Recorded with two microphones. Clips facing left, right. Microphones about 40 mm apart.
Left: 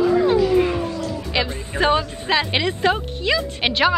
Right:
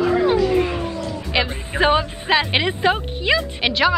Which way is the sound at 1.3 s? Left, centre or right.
Centre.